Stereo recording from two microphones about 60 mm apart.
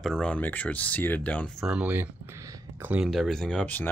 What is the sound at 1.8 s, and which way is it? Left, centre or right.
Speech, right.